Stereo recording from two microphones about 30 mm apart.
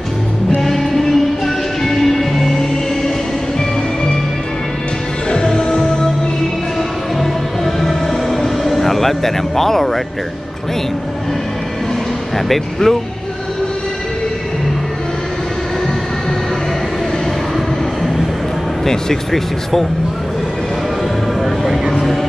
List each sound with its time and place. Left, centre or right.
0.6 s music: centre
5.3 s music: left
7.2 s music: centre
12.8 s speech: centre
18.9 s speech: centre
21.4 s vehicle: centre